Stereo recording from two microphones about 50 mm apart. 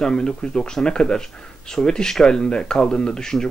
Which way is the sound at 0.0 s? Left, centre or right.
Centre.